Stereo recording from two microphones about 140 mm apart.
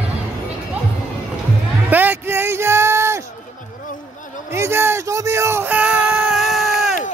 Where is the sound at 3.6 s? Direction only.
70° left (ahead or behind).